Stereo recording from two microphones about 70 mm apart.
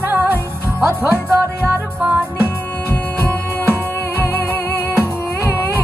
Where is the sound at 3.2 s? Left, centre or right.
Right.